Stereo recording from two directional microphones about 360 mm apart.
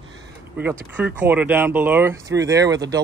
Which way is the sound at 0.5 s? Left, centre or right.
Centre.